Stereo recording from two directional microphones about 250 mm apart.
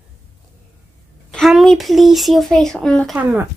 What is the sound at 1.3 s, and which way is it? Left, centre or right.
Speech, centre.